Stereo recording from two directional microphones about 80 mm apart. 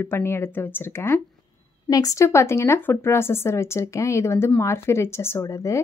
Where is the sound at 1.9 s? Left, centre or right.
Left.